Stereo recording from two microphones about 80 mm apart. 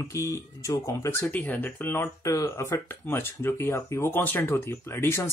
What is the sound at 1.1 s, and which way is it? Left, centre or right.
Speech, left.